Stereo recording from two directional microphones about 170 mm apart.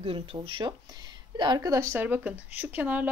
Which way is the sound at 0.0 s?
35° right (ahead or behind).